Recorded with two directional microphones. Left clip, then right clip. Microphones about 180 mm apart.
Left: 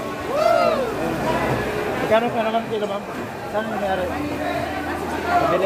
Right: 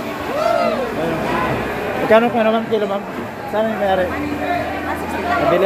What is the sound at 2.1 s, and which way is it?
Speech, 65° right (ahead or behind).